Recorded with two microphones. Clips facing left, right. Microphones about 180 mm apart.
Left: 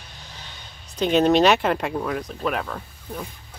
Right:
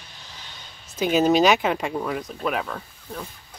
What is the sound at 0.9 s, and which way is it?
Speech, 5° right (ahead or behind).